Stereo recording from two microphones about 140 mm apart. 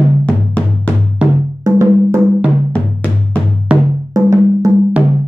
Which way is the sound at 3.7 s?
10° right (ahead or behind).